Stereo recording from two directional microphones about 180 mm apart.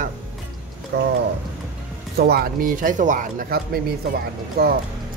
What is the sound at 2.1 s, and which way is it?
Speech, 60° right (ahead or behind).